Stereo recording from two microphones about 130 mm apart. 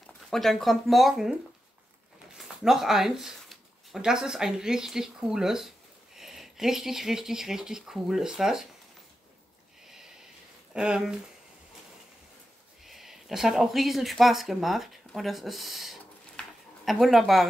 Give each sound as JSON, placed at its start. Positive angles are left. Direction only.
{"t": 0.0, "sound": "speech", "side_deg": 5}
{"t": 2.3, "sound": "speech", "side_deg": -5}
{"t": 9.8, "sound": "a sound", "side_deg": -5}
{"t": 10.7, "sound": "speech", "side_deg": -5}
{"t": 12.8, "sound": "speech", "side_deg": 0}